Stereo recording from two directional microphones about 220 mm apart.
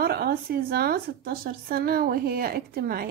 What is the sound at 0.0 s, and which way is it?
Speech, 45° right (ahead or behind).